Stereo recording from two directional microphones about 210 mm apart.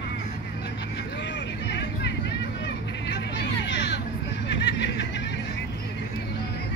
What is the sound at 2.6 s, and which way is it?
Music, 55° left (ahead or behind).